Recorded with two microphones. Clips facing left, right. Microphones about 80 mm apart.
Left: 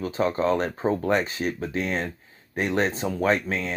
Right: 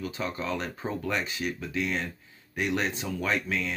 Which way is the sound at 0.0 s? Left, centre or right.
Left.